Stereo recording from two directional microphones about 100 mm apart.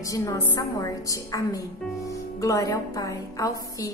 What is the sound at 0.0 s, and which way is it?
A woman's voice, 35° left (ahead or behind).